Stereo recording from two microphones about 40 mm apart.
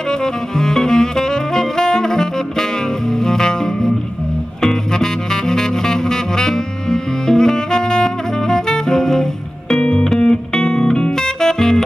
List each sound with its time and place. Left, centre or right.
0.1 s saxophone: centre
3.1 s music: centre
9.8 s music: left